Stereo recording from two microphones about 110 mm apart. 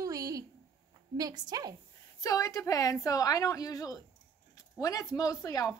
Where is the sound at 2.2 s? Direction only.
30° left (ahead or behind).